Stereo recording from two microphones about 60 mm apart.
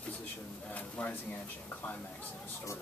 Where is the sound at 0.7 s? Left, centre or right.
Left.